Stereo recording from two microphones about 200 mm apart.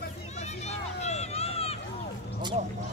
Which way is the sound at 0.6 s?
35° left (ahead or behind).